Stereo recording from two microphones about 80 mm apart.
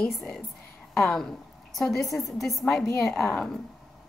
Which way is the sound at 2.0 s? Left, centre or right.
Left.